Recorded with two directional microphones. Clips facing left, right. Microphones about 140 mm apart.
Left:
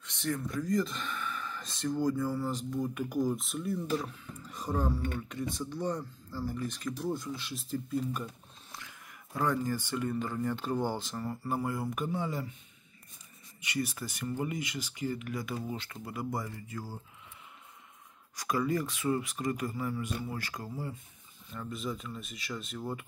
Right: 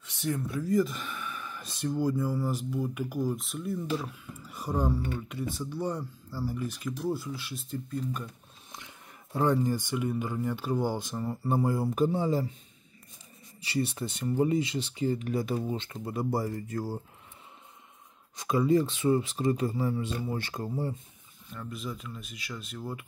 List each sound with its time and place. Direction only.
0.0 s speech: 5° right (ahead or behind)
8.7 s speech: 25° right (ahead or behind)
11.4 s speech: 30° right (ahead or behind)
13.6 s speech: 30° right (ahead or behind)
16.5 s speech: 45° right (ahead or behind)
18.3 s speech: 25° right (ahead or behind)
21.5 s speech: centre (ahead or behind)